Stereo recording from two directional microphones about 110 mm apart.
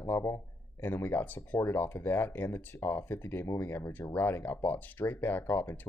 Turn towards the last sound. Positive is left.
turn(degrees=20)  # may be behind; listen again after turning